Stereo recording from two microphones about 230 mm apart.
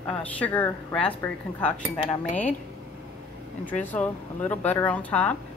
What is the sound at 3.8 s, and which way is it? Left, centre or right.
A woman's voice, centre.